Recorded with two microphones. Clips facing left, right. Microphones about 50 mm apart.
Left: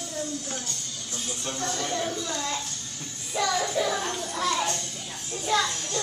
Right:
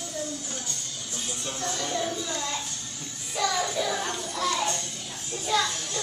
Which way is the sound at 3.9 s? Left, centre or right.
Centre.